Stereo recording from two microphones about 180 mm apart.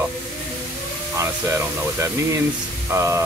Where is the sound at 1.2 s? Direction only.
15° right (ahead or behind).